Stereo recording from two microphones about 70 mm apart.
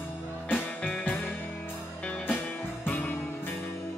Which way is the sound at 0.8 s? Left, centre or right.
Left.